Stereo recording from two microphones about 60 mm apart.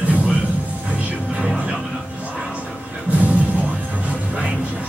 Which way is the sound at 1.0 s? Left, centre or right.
Right.